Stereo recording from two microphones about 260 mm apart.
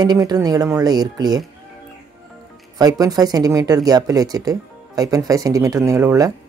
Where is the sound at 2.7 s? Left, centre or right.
Centre.